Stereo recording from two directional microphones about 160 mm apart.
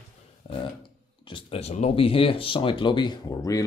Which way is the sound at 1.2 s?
35° left (ahead or behind).